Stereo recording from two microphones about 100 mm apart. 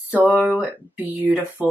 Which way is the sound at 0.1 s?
15° right (ahead or behind).